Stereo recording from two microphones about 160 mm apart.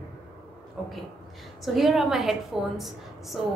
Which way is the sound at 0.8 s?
5° right (ahead or behind).